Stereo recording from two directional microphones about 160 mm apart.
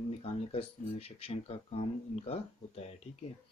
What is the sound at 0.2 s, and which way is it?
Speech, 40° left (ahead or behind).